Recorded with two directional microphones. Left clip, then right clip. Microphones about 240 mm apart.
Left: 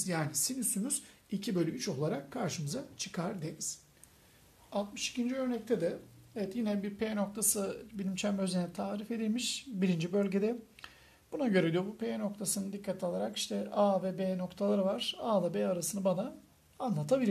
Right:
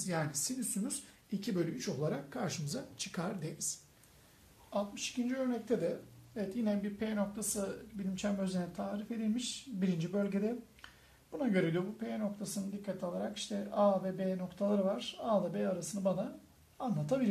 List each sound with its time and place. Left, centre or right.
0.0 s speech: left
4.6 s speech: left